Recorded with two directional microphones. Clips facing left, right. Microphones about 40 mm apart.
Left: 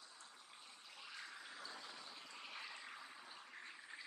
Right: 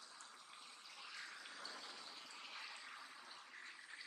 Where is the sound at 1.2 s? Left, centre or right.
Centre.